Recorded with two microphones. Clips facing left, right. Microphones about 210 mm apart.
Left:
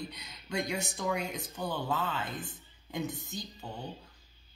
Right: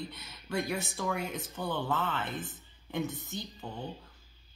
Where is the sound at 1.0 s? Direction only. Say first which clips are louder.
Left 1 dB; 15° left (ahead or behind).